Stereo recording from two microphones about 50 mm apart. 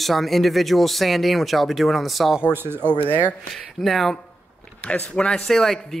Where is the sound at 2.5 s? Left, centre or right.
Right.